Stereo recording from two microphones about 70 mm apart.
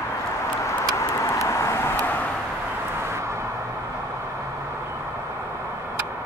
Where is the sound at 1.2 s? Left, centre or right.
Left.